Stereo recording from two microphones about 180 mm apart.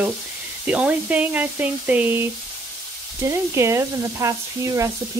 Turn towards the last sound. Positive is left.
turn(degrees=-15)  # may be behind; listen again after turning